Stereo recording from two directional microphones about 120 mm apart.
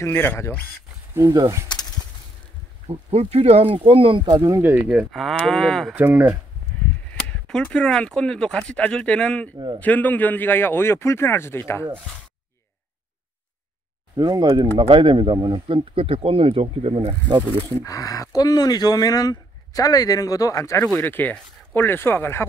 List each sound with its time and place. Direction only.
0.0 s speech: 20° left (ahead or behind)
1.1 s speech: 25° right (ahead or behind)
2.9 s speech: 60° right (ahead or behind); by 4.4 s 40° right (ahead or behind)
4.4 s speech: 20° right (ahead or behind)
5.1 s cattle: centre (ahead or behind)
5.9 s speech: 15° right (ahead or behind)
7.2 s speech: 10° left (ahead or behind)
14.1 s speech: 35° right (ahead or behind); by 17.4 s 50° right (ahead or behind)
17.8 s speech: 30° left (ahead or behind)